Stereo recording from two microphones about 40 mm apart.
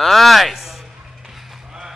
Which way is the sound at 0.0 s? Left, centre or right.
Centre.